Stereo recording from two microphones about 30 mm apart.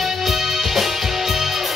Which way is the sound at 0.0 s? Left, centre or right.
Centre.